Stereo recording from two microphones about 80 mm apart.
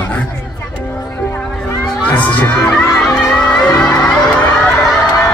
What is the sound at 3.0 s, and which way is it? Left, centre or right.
Music, centre.